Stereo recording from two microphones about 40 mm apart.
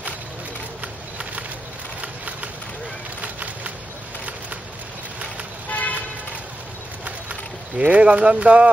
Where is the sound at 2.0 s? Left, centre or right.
Right.